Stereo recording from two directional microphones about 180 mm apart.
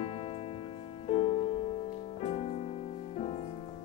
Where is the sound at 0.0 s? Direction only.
30° left (ahead or behind).